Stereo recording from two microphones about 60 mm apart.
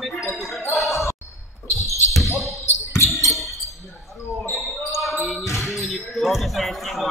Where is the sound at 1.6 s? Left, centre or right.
Left.